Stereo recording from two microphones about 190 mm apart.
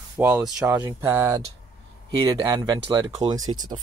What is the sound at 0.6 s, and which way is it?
Speech, 15° right (ahead or behind).